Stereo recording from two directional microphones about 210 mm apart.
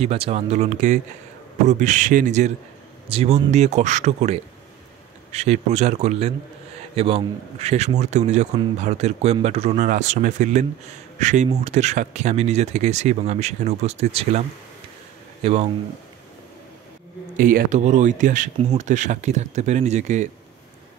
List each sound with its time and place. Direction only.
0.0 s a man's voice: 30° right (ahead or behind)
15.4 s a man's voice: 30° right (ahead or behind)
17.4 s a man's voice: 40° right (ahead or behind)